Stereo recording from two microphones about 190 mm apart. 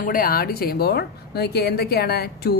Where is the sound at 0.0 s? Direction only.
50° left (ahead or behind).